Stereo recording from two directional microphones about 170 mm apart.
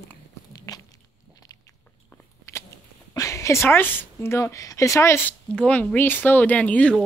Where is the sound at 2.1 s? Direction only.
15° left (ahead or behind).